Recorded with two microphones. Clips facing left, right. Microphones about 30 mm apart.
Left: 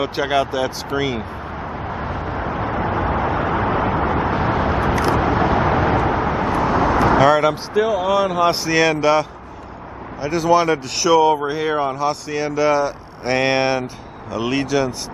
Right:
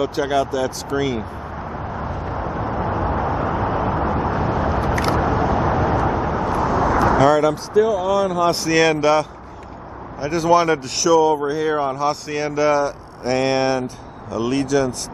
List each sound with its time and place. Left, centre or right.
0.0 s speech: left
1.6 s vehicle: left
8.6 s speech: centre
11.1 s speech: left